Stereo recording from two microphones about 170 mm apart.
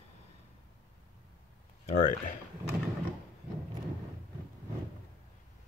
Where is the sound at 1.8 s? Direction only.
45° left (ahead or behind).